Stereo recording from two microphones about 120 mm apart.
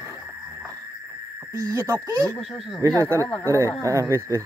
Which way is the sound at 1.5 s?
25° right (ahead or behind).